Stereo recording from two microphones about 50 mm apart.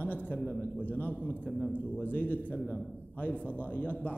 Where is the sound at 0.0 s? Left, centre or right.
Left.